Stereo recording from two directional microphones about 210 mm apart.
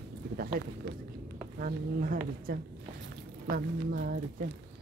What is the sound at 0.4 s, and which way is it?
Speech, 45° right (ahead or behind).